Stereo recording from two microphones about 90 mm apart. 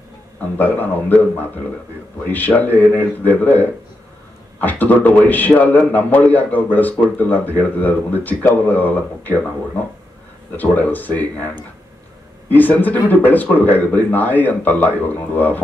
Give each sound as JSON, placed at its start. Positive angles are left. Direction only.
{"t": 0.4, "sound": "a man's voice", "side_deg": 20}
{"t": 10.5, "sound": "a man's voice", "side_deg": 20}